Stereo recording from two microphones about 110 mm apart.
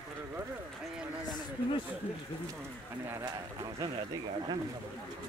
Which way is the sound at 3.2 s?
35° right (ahead or behind).